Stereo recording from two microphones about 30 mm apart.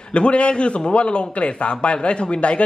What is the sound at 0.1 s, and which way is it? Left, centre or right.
A man's voice, left.